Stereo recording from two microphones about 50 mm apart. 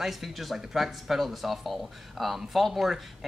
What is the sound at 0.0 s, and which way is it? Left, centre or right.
Speech, centre.